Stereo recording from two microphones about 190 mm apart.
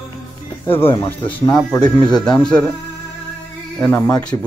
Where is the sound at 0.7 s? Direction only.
30° left (ahead or behind).